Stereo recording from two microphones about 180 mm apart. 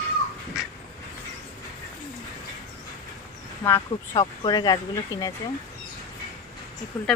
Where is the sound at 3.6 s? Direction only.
15° left (ahead or behind).